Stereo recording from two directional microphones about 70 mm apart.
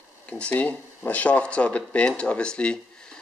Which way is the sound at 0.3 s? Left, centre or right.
Centre.